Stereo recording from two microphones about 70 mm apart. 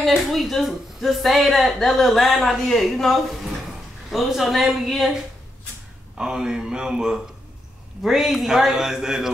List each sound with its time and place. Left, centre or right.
0.0 s speech: centre
6.1 s speech: centre